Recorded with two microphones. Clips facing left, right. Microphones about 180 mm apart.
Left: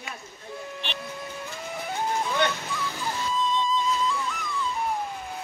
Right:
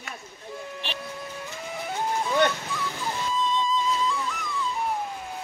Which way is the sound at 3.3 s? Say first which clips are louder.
Even; centre (ahead or behind).